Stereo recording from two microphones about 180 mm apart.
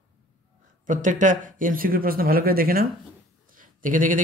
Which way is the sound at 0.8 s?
45° right (ahead or behind).